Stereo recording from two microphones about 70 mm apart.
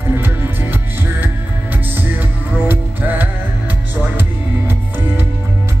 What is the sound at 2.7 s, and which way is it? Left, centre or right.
Music, right.